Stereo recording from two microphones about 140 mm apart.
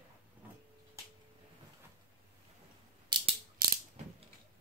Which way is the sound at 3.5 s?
90° right.